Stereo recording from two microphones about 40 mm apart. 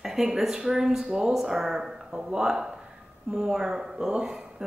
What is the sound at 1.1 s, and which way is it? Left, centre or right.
Speech, right.